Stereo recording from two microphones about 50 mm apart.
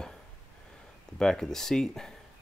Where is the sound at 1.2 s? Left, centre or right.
Centre.